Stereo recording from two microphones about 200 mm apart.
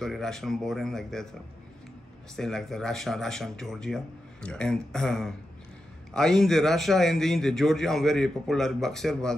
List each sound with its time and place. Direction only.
0.0 s a man's voice: centre (ahead or behind)
2.3 s a man's voice: centre (ahead or behind)